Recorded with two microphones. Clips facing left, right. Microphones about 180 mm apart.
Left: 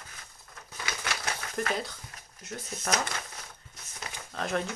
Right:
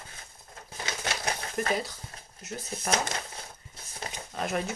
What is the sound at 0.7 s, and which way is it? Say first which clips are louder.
Crumpling: right 2 dB; 30° right (ahead or behind).